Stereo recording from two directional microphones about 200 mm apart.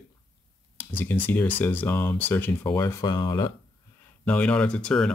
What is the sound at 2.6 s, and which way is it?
Speech, 20° left (ahead or behind).